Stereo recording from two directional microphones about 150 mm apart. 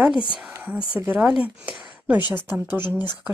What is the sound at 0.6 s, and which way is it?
Speech, 10° right (ahead or behind).